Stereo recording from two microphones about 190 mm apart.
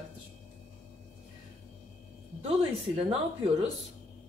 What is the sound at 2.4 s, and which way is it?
Speech, 30° right (ahead or behind).